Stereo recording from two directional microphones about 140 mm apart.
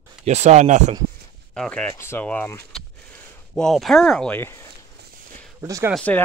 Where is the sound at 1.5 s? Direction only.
5° left (ahead or behind).